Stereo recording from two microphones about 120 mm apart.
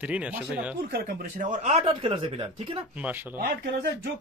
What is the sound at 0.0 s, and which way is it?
Speech, 10° right (ahead or behind).